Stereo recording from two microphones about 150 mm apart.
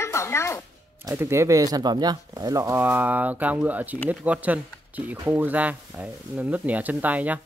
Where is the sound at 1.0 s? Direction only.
15° right (ahead or behind).